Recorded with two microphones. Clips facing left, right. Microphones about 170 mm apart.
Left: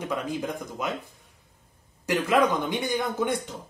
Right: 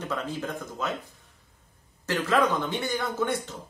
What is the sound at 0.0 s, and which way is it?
Speech, 15° left (ahead or behind).